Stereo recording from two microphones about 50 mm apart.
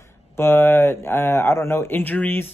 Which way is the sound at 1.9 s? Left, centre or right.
Left.